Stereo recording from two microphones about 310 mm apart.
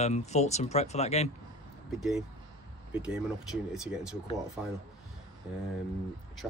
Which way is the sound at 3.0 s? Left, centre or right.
Centre.